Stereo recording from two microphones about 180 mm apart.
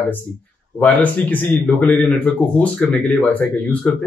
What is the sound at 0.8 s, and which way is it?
A man's voice, 10° left (ahead or behind).